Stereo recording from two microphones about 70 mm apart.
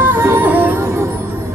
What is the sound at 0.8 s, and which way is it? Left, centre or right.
Music, right.